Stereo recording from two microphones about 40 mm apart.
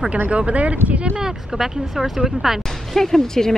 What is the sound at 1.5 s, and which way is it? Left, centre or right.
Speech, centre.